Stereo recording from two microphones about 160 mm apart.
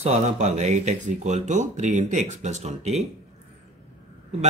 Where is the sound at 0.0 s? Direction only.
45° right (ahead or behind).